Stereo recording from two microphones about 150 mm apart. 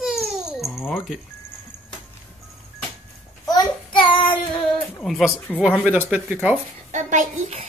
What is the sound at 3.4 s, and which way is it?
Child singing, 30° left (ahead or behind).